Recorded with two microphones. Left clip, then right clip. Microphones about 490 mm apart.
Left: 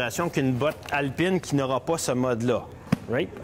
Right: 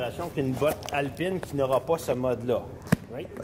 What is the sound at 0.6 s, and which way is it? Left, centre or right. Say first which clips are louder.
Speech: right 3 dB; left.